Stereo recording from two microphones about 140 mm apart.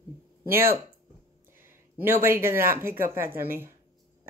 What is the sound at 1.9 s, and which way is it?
Speech, 15° right (ahead or behind).